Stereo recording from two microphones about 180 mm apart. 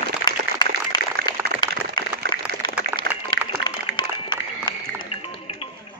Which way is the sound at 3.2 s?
25° left (ahead or behind).